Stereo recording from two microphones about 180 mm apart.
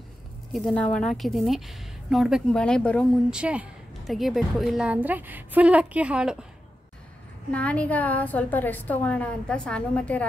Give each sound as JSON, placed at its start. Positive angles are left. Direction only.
{"t": 0.5, "sound": "a woman's voice", "side_deg": 5}
{"t": 3.3, "sound": "a woman's voice", "side_deg": -5}
{"t": 7.5, "sound": "a woman's voice", "side_deg": 5}